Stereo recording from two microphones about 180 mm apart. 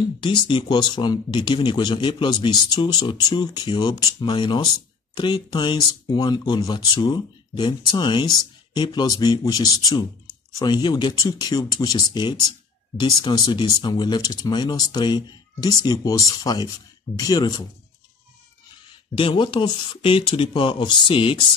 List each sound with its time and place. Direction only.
0.2 s speech: 25° left (ahead or behind)
18.9 s speech: 30° left (ahead or behind)